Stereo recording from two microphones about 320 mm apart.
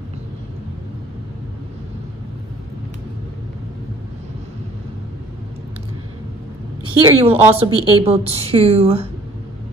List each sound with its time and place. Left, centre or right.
7.1 s a woman's voice: centre